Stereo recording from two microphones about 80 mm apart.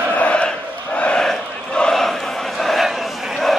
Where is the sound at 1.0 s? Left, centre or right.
Centre.